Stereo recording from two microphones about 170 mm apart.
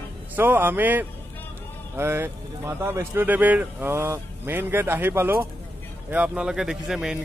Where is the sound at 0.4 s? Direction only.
10° right (ahead or behind).